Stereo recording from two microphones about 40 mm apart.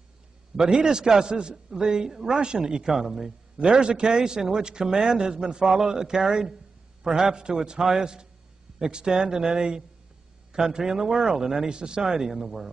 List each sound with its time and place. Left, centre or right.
0.6 s a man's voice: centre